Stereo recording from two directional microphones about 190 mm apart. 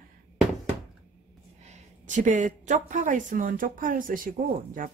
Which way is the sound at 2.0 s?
40° right (ahead or behind).